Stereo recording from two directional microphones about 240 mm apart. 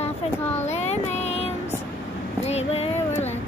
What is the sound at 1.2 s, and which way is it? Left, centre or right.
Music, left.